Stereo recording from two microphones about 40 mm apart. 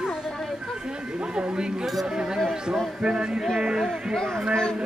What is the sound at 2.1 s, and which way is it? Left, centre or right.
Speech, centre.